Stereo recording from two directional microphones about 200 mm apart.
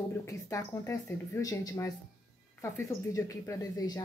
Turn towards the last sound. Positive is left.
turn(degrees=20)  # may be behind; listen again after turning